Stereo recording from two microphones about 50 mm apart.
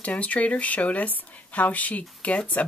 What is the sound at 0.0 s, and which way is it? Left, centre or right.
Speech, left.